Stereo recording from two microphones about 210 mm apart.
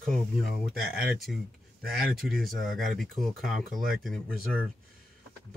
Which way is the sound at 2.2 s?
Centre (ahead or behind).